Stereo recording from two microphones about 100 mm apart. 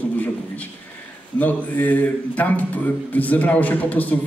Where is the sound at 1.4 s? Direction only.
15° left (ahead or behind).